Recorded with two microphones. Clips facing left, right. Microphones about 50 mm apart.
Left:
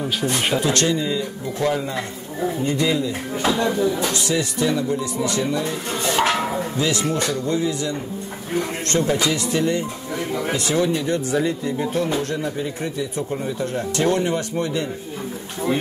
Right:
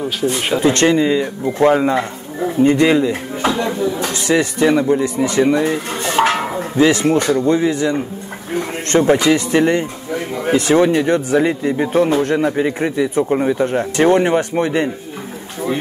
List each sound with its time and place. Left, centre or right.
0.2 s speech: centre
0.6 s speech: right
3.4 s speech: right
4.0 s speech: right
12.4 s speech: right